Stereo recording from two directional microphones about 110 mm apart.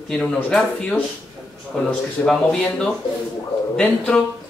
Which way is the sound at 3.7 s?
10° left (ahead or behind).